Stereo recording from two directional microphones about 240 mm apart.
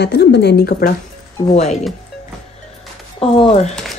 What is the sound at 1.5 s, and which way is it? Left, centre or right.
Speech, left.